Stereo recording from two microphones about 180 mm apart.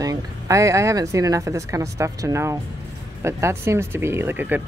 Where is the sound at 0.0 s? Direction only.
20° right (ahead or behind).